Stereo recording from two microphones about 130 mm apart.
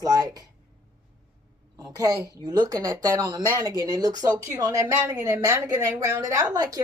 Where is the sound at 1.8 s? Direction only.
30° right (ahead or behind).